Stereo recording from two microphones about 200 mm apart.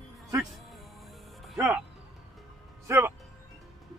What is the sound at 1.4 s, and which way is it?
Music, centre (ahead or behind).